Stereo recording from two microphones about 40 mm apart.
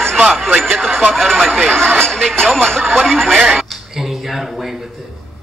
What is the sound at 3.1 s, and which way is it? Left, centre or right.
Radio, centre.